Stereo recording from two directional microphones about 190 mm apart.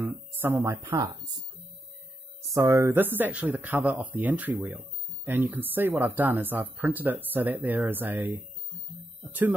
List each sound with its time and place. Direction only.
0.0 s speech: 15° right (ahead or behind)
2.5 s speech: 15° right (ahead or behind)